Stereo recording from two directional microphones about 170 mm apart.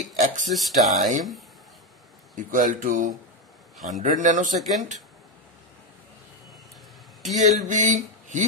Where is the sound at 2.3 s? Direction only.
50° right (ahead or behind).